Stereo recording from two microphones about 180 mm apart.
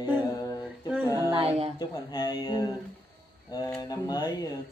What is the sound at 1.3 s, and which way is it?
Speech, 30° right (ahead or behind).